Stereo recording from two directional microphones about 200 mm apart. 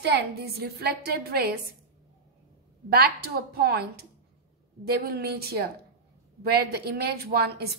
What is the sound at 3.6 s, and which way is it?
A woman's voice, 55° right (ahead or behind).